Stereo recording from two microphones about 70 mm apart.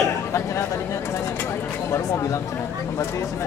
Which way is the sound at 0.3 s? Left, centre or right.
Left.